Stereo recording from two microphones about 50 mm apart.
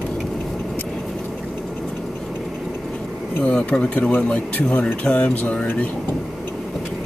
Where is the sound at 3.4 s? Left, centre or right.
Left.